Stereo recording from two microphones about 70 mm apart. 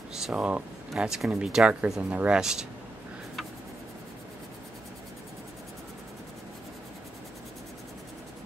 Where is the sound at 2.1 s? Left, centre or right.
Centre.